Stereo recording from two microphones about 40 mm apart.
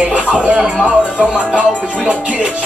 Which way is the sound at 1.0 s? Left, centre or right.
Left.